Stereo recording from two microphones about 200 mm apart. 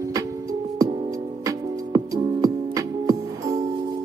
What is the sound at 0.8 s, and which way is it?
Music, 25° right (ahead or behind).